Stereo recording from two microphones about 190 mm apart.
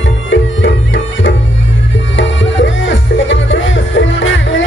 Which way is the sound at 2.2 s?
70° left (ahead or behind).